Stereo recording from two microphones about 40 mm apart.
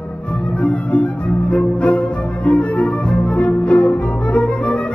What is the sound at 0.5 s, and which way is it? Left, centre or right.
Music, left.